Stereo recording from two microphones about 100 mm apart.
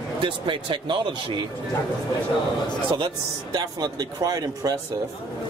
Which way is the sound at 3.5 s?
40° right (ahead or behind).